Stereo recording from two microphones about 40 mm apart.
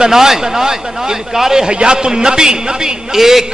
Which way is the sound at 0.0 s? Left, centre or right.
Centre.